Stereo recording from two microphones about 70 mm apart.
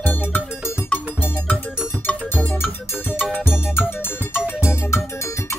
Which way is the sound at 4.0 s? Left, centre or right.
Left.